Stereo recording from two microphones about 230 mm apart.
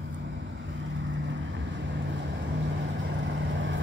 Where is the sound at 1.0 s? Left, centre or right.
Right.